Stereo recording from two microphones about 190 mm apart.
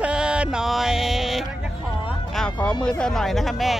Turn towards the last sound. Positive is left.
turn(degrees=0)  # may be behind; listen again after turning